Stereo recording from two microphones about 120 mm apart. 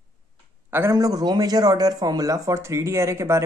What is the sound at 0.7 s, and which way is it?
A man's voice, 25° right (ahead or behind).